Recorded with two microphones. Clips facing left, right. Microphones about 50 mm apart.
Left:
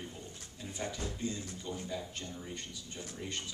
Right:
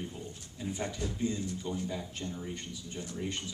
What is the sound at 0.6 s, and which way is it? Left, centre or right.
Speech, centre.